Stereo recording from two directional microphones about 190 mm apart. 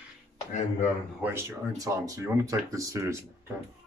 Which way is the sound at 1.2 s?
15° right (ahead or behind).